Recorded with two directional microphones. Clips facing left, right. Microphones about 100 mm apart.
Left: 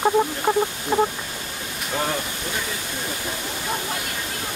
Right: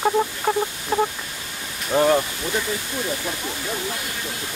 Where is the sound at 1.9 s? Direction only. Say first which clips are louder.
Right 8 dB; 20° right (ahead or behind).